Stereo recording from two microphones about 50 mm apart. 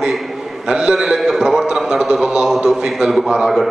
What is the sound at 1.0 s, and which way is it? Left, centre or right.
A man's voice, centre.